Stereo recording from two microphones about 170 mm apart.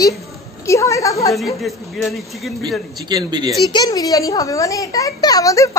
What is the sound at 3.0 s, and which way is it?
Speech, 25° right (ahead or behind).